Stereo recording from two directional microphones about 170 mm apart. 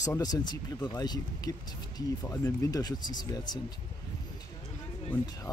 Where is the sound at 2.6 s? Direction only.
25° left (ahead or behind).